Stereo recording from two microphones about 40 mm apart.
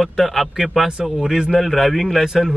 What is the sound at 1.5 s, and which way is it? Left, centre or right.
Speech, centre.